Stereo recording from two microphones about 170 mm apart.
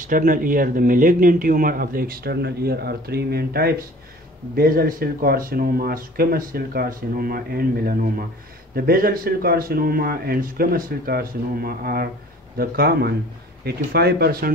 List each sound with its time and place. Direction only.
0.0 s speech: 55° right (ahead or behind)